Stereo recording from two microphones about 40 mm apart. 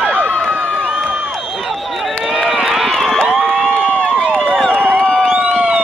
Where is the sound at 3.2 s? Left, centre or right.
Right.